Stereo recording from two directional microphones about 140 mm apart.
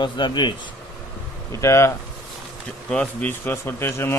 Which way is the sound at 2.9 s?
10° left (ahead or behind).